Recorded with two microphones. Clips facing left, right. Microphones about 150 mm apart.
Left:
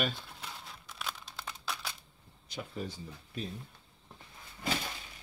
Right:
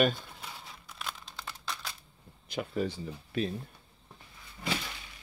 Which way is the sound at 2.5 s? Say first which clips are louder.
Right 7 dB; 70° right (ahead or behind).